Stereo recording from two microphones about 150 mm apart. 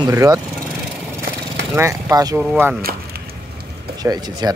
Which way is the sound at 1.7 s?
20° right (ahead or behind).